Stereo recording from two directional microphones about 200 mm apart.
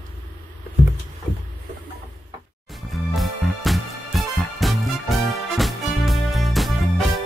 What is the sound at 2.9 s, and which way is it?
Music, centre (ahead or behind).